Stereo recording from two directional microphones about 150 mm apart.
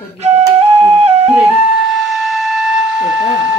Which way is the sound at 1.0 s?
45° right (ahead or behind).